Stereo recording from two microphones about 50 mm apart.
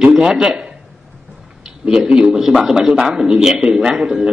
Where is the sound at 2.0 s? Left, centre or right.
Centre.